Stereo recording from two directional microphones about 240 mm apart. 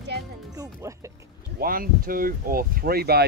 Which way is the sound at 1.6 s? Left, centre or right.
Right.